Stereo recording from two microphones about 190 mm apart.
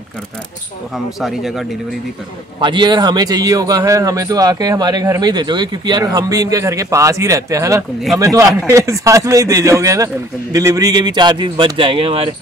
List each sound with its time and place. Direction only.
0.9 s speech: centre (ahead or behind)
2.6 s a man's voice: 25° right (ahead or behind)